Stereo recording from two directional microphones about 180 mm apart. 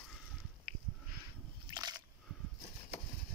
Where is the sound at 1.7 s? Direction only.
20° right (ahead or behind).